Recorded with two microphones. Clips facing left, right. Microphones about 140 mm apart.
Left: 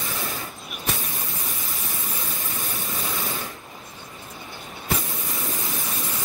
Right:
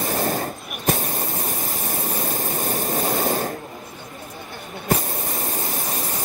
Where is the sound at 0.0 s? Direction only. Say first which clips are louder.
Right 9 dB; 45° right (ahead or behind).